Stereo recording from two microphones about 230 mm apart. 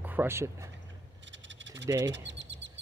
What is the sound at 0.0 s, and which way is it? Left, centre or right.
Speech, centre.